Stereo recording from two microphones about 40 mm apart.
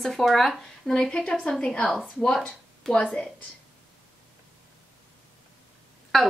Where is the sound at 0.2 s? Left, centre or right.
Centre.